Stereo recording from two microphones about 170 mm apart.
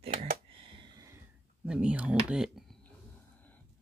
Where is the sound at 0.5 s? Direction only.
30° right (ahead or behind).